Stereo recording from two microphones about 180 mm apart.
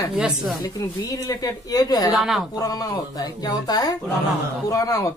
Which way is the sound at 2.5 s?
20° left (ahead or behind).